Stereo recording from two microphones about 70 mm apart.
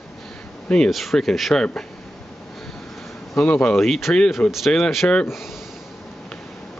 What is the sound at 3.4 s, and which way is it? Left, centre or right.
Speech, centre.